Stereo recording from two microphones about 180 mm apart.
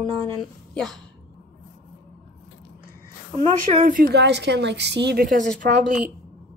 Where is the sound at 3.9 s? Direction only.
50° right (ahead or behind).